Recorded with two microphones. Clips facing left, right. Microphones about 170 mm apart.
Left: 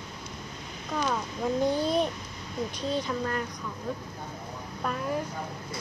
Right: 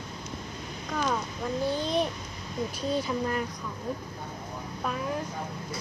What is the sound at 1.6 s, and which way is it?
Babbling, 15° left (ahead or behind).